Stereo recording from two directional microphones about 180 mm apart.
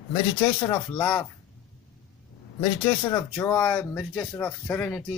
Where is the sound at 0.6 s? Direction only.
25° left (ahead or behind).